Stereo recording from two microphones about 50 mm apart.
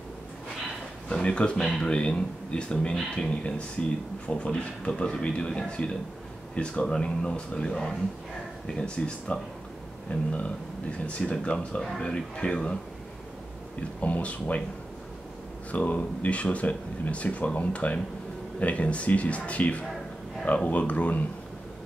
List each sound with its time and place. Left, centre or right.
1.1 s speech: centre
14.0 s speech: left
15.7 s speech: left